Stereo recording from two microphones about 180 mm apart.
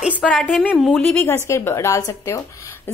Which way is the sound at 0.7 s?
Centre (ahead or behind).